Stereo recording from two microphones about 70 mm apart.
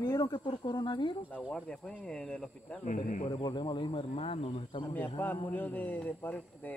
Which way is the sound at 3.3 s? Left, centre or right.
Left.